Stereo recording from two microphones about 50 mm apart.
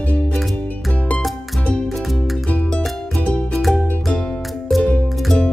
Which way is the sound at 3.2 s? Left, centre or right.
Left.